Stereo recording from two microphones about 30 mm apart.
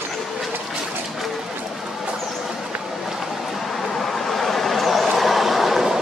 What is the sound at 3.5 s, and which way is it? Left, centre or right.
Vehicle, centre.